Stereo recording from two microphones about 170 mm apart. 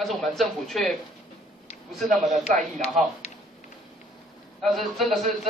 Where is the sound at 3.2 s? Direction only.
40° left (ahead or behind).